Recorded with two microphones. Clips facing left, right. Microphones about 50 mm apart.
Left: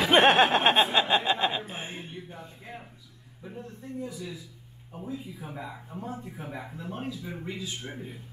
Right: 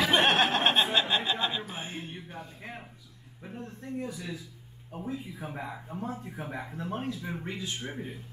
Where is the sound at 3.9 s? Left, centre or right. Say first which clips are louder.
Even; right.